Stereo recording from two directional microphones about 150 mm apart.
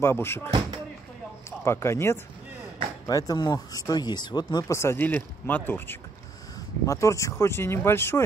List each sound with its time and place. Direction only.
0.0 s speech: 15° left (ahead or behind)
1.6 s speech: 15° left (ahead or behind)